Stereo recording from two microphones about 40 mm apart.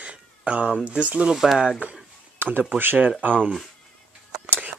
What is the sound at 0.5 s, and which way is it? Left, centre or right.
Speech, right.